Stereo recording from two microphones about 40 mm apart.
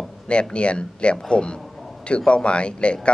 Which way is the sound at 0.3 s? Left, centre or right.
Left.